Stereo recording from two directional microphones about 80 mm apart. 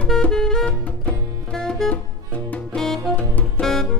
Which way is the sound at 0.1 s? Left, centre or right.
Centre.